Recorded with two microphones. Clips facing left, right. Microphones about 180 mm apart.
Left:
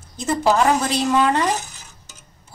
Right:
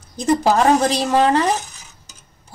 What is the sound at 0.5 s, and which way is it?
Speech, 35° right (ahead or behind).